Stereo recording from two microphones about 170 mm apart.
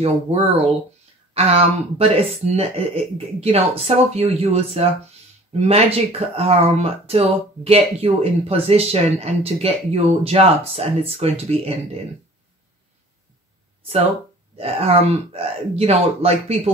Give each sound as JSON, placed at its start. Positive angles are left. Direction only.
{"t": 0.0, "sound": "speech", "side_deg": -35}
{"t": 14.6, "sound": "speech", "side_deg": -40}